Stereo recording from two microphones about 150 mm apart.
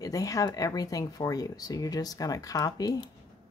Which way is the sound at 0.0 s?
25° left (ahead or behind).